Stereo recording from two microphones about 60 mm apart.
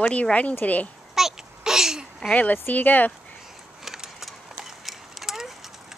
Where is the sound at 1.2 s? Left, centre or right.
Centre.